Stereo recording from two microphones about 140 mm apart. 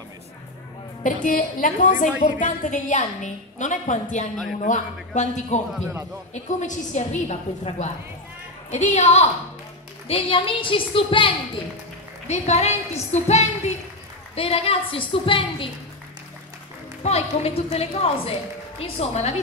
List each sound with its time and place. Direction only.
1.0 s a woman's voice: 70° left (ahead or behind); by 9.3 s 50° left (ahead or behind)
10.0 s a woman's voice: 40° left (ahead or behind)
12.3 s a woman's voice: 50° left (ahead or behind)
17.0 s a woman's voice: 45° left (ahead or behind)